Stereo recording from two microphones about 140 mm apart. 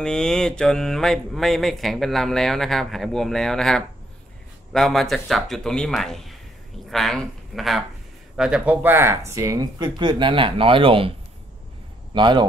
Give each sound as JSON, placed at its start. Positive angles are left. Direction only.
{"t": 0.0, "sound": "mantra", "side_deg": 5}
{"t": 6.9, "sound": "a man's voice", "side_deg": 0}